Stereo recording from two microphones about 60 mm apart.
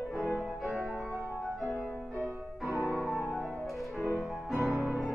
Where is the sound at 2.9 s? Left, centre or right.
Centre.